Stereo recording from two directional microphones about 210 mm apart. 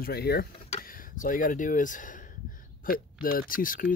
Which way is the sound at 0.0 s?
50° left (ahead or behind).